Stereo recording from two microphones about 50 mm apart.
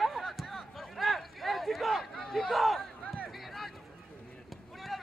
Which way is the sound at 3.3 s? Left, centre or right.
Centre.